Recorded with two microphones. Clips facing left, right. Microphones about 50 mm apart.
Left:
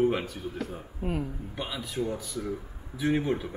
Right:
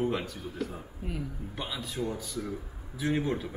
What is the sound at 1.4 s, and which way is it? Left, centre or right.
A man's voice, centre.